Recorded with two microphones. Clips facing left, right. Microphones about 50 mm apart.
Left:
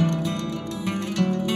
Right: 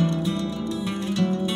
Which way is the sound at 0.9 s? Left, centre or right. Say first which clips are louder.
Left 1 dB; left.